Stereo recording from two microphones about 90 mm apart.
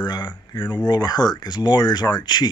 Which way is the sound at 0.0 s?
55° left (ahead or behind).